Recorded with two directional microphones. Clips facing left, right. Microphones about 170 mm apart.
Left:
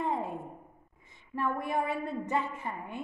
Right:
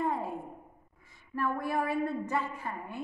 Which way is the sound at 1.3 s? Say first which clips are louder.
Even; 20° left (ahead or behind).